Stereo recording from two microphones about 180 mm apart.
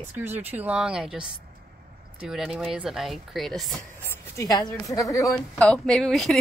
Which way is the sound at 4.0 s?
20° left (ahead or behind).